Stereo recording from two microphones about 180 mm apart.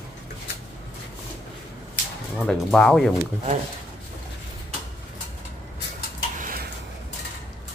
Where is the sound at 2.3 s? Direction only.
5° left (ahead or behind).